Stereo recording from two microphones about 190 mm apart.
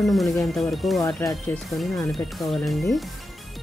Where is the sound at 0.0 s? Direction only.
Centre (ahead or behind).